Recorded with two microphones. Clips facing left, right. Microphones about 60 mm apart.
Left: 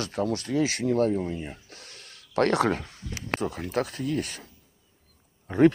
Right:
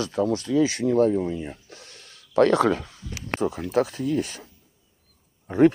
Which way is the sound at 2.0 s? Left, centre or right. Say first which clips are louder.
Right 5 dB; left.